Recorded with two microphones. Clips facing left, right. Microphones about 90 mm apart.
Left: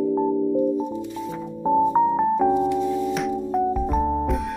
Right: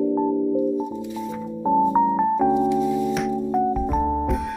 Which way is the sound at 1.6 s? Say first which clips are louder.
Even; centre (ahead or behind).